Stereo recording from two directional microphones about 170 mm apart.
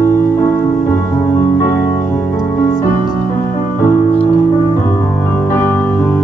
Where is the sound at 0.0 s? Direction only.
15° left (ahead or behind).